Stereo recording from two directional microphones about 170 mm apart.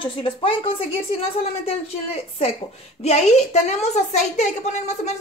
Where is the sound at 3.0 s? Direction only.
40° left (ahead or behind).